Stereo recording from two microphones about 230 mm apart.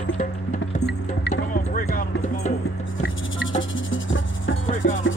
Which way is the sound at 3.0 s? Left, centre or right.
Left.